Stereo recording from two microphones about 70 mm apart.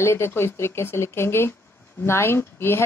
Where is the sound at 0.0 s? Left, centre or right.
Left.